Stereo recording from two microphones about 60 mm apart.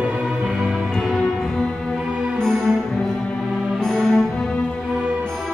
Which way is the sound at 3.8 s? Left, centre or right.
Centre.